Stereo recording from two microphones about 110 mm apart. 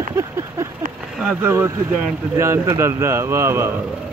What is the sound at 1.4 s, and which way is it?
Speech, 20° right (ahead or behind).